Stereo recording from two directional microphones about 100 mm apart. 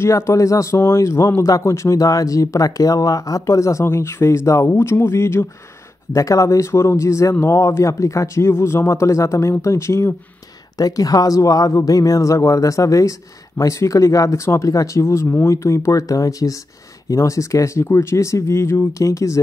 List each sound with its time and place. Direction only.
0.0 s speech: 30° left (ahead or behind)